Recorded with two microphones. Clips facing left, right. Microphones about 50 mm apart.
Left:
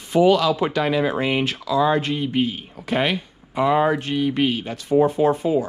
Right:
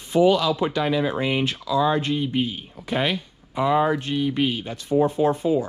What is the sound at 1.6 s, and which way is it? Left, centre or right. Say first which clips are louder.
Speech: left 2 dB; left.